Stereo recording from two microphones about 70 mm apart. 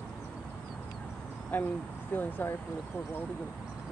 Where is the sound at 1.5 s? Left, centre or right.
Left.